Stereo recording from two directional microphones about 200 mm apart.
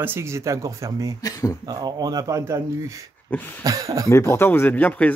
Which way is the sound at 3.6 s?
15° right (ahead or behind).